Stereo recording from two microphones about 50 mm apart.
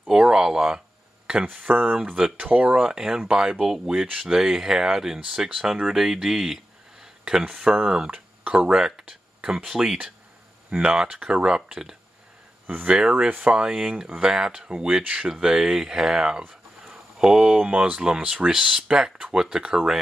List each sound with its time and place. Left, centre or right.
0.1 s speech: centre; by 2.7 s right
2.7 s speech: centre
8.1 s speech: right
8.7 s a sound: centre
9.7 s speech: centre
12.6 s speech: right